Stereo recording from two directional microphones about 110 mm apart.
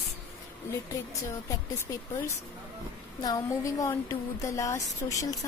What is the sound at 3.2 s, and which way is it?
A woman's voice, 35° left (ahead or behind).